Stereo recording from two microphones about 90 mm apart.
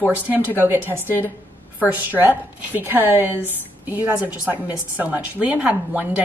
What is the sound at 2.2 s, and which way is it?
A woman's voice, 20° right (ahead or behind).